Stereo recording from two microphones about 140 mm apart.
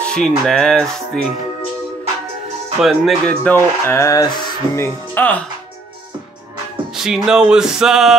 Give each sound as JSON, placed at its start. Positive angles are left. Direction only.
{"t": 0.0, "sound": "music", "side_deg": 5}
{"t": 2.8, "sound": "music", "side_deg": 0}
{"t": 3.3, "sound": "speech", "side_deg": 10}
{"t": 7.0, "sound": "music", "side_deg": -5}